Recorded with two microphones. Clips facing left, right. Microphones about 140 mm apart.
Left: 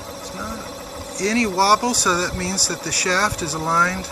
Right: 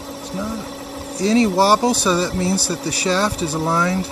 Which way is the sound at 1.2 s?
25° right (ahead or behind).